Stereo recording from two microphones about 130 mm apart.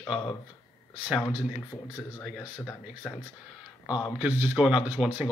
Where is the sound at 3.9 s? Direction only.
5° right (ahead or behind).